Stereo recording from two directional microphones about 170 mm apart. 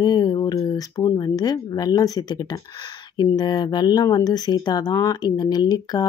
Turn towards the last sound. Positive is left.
turn(degrees=25)  # may be behind; listen again after turning